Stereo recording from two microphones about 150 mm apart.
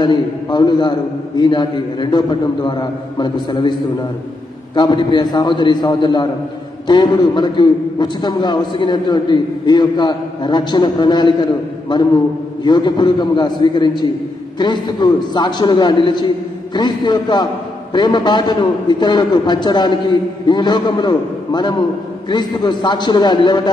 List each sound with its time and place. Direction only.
0.0 s a man's voice: 30° left (ahead or behind)
4.7 s a man's voice: 30° left (ahead or behind)
12.6 s a man's voice: 30° left (ahead or behind)